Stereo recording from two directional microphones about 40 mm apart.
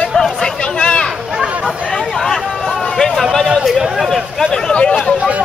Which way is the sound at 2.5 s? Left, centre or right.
Centre.